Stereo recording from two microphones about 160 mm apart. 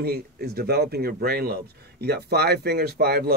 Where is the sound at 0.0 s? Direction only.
75° right (ahead or behind).